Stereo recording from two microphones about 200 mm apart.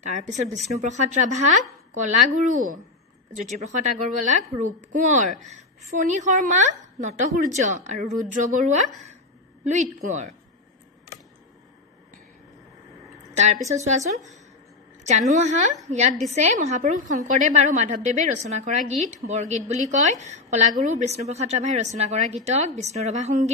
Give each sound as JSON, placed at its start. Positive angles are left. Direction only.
{"t": 0.0, "sound": "a woman's voice", "side_deg": -35}
{"t": 13.7, "sound": "a woman's voice", "side_deg": -35}